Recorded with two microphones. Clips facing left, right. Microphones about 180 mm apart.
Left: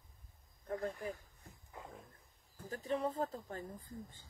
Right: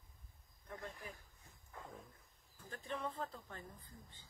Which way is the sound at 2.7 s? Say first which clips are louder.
Left 7 dB; 40° left (ahead or behind).